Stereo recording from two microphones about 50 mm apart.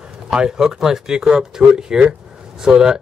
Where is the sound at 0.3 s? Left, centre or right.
Centre.